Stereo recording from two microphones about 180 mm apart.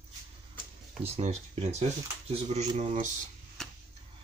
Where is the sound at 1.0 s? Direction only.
35° right (ahead or behind).